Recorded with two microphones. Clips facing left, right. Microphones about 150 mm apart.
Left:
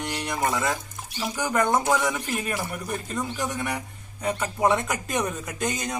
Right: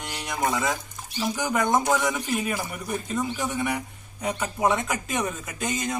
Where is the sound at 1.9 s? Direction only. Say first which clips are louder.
Even; centre (ahead or behind).